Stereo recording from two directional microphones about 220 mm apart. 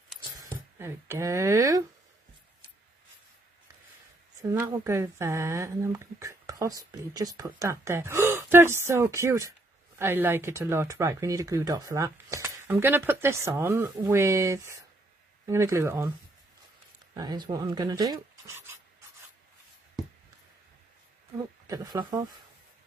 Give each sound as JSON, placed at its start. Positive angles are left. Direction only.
{"t": 0.4, "sound": "speech", "side_deg": -10}
{"t": 4.4, "sound": "speech", "side_deg": -15}
{"t": 17.1, "sound": "speech", "side_deg": -20}
{"t": 21.6, "sound": "speech", "side_deg": -15}